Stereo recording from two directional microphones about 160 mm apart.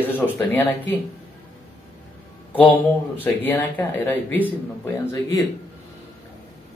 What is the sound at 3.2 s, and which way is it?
Speech, 10° left (ahead or behind).